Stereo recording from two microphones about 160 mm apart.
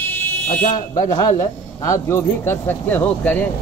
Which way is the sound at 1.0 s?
25° left (ahead or behind).